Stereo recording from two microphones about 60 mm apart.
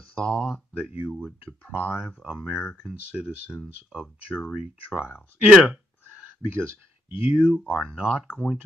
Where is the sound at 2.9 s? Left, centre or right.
Centre.